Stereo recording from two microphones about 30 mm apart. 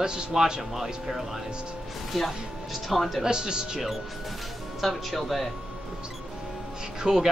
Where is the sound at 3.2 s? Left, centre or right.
Right.